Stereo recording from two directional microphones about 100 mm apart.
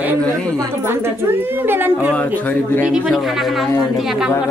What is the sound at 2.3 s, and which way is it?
Speech, 15° left (ahead or behind).